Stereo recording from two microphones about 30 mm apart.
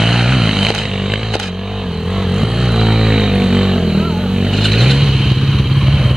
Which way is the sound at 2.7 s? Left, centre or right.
Right.